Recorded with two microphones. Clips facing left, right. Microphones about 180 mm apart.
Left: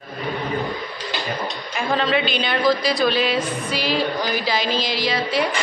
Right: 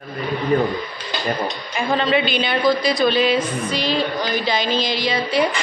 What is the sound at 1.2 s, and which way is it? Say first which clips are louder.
A woman's voice: right 5 dB; centre (ahead or behind).